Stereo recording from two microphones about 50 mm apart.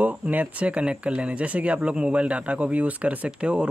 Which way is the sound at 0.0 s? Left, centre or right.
Right.